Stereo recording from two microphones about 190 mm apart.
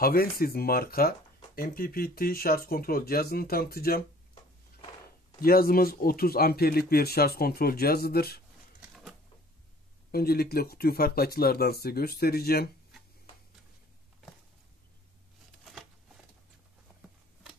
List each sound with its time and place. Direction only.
0.0 s speech: 50° left (ahead or behind)
5.4 s speech: 50° left (ahead or behind)
10.1 s speech: 55° left (ahead or behind)